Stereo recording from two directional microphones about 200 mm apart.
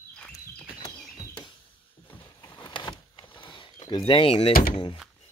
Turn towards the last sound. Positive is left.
turn(degrees=30)  # may be behind; listen again after turning